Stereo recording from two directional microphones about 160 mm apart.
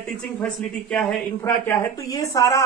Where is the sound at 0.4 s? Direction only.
5° left (ahead or behind).